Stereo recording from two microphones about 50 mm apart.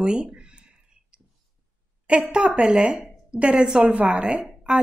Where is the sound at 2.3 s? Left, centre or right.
Centre.